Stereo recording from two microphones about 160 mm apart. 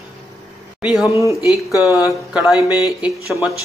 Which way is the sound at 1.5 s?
20° left (ahead or behind).